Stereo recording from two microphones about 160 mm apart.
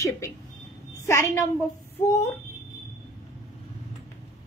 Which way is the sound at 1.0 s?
15° left (ahead or behind).